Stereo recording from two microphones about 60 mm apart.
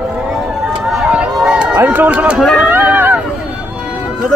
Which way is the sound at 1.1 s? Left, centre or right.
Centre.